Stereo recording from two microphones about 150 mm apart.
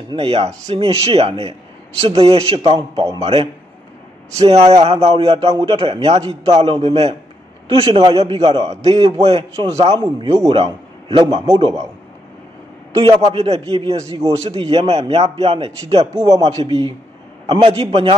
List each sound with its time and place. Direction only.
0.1 s a man's voice: 40° right (ahead or behind)
12.9 s a man's voice: 35° right (ahead or behind)